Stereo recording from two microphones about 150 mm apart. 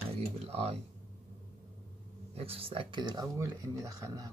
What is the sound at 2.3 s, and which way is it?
Speech, 40° right (ahead or behind).